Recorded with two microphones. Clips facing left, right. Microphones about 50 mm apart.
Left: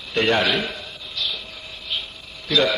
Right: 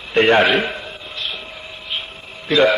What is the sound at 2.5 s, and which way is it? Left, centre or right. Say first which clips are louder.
Speech: right 5 dB; right.